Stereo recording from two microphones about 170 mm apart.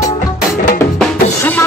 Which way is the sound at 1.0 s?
10° left (ahead or behind).